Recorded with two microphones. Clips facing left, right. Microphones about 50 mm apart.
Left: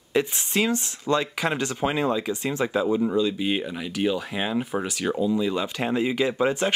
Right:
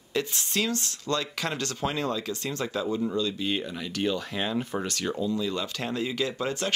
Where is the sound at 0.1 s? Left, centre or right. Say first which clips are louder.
Left 5 dB; centre.